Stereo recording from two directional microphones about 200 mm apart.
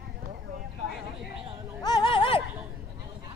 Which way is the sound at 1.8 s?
20° left (ahead or behind).